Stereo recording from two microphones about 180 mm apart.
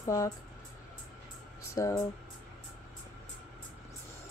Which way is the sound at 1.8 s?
15° left (ahead or behind).